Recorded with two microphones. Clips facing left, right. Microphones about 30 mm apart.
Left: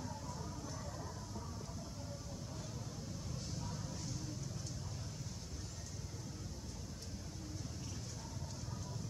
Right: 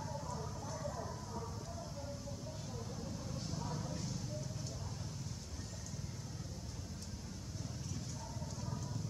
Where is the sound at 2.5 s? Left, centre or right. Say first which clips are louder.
Right 2 dB; centre.